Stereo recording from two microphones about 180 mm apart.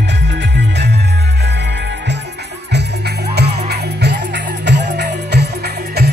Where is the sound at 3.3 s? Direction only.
65° right (ahead or behind).